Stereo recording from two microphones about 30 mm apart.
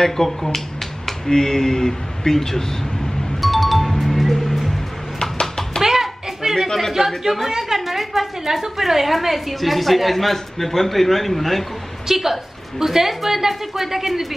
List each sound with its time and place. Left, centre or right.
0.0 s speech: centre
3.3 s music: centre
5.2 s a sound: left
5.8 s a sound: centre
7.1 s a woman's voice: centre
12.1 s a woman's voice: centre